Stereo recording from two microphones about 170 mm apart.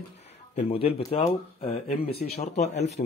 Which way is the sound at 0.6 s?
35° left (ahead or behind).